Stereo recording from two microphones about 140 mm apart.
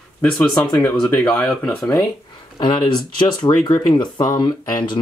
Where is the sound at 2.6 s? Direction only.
35° left (ahead or behind).